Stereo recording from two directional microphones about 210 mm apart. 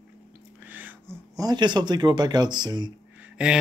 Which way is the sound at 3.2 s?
5° right (ahead or behind).